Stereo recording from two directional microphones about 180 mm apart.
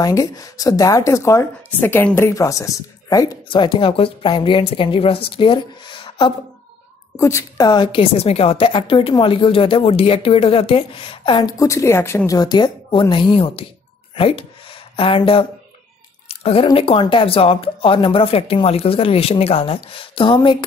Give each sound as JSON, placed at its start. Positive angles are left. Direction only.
{"t": 0.0, "sound": "a woman's voice", "side_deg": 20}
{"t": 7.2, "sound": "a woman's voice", "side_deg": 15}
{"t": 14.1, "sound": "a sound", "side_deg": 30}
{"t": 16.3, "sound": "speech", "side_deg": 30}